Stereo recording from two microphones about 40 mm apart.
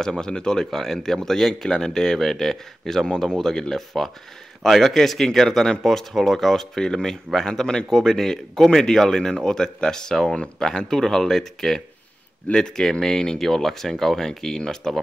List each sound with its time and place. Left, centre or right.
0.0 s speech: centre